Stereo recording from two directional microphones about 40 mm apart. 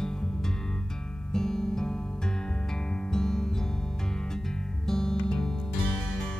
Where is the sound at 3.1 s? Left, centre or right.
Centre.